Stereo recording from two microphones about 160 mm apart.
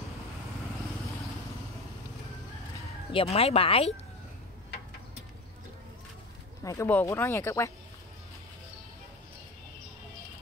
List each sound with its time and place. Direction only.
3.1 s speech: 35° left (ahead or behind)
6.6 s speech: 20° left (ahead or behind)